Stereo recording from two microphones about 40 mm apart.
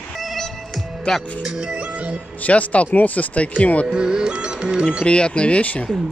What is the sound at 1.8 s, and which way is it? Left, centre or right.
Music, right.